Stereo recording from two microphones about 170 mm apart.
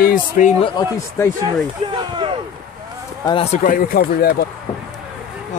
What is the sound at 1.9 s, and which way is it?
Speech, 30° right (ahead or behind).